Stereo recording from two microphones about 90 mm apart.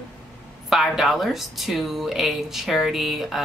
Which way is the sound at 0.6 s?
Centre (ahead or behind).